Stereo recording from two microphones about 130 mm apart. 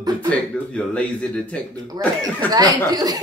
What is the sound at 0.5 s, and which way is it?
Speech, 10° left (ahead or behind).